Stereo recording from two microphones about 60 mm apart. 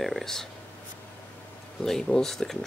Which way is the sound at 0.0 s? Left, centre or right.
Centre.